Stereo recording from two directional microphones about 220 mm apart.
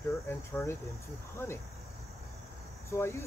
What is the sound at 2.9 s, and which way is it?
Speech, 10° left (ahead or behind).